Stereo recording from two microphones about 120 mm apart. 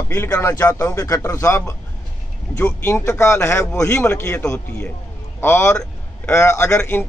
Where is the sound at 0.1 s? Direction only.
20° left (ahead or behind).